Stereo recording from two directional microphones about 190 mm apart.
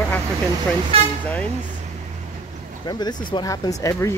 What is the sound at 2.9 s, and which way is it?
Speech, 20° left (ahead or behind).